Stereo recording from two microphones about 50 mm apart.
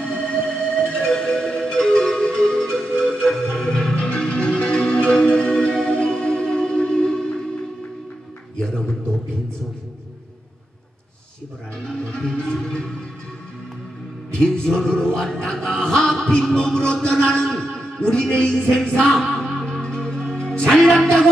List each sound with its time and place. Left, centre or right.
0.0 s music: centre
3.6 s music: centre
11.9 s music: centre
14.4 s music: centre
15.1 s a sound: centre
16.5 s music: centre
17.2 s a sound: centre
18.3 s music: centre